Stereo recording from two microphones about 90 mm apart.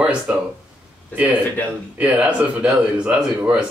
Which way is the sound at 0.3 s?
15° right (ahead or behind).